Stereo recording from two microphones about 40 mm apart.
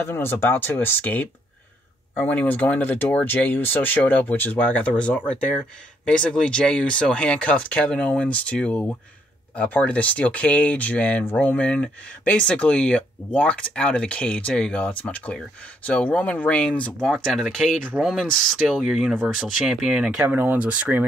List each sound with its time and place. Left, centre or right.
0.0 s speech: left
6.0 s speech: left
16.2 s speech: left
16.4 s speech: left
17.0 s speech: centre
17.9 s speech: right
18.7 s speech: centre
20.2 s speech: right
20.5 s speech: right